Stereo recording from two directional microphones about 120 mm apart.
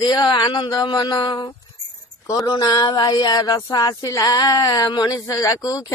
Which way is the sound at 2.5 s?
35° left (ahead or behind).